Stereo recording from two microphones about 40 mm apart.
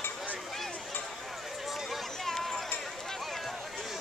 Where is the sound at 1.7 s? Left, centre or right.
Centre.